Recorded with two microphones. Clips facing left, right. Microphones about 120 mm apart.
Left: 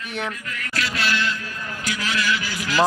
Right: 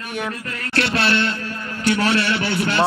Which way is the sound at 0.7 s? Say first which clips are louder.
Right 6 dB; 65° right (ahead or behind).